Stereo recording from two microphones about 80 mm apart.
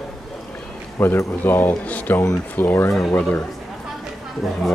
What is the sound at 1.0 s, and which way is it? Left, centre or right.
Speech, left.